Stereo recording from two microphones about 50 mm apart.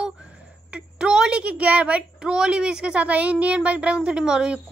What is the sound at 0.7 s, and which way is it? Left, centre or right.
A woman's voice, centre.